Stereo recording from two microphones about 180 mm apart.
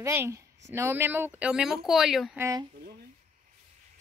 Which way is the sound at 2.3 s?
15° right (ahead or behind).